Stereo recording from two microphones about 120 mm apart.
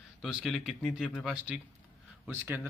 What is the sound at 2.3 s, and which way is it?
Speech, 15° right (ahead or behind).